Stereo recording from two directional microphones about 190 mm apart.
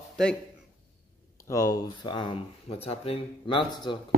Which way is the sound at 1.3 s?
15° left (ahead or behind).